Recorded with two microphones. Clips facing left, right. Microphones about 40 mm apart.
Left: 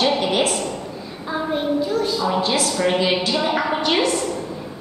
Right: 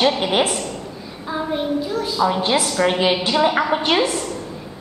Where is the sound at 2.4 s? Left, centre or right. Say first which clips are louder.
Right 2 dB; right.